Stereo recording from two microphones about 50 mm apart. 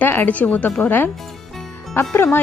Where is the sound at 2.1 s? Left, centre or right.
Left.